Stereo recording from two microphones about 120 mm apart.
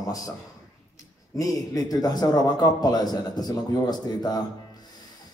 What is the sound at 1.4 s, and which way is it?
A man's voice, 30° left (ahead or behind).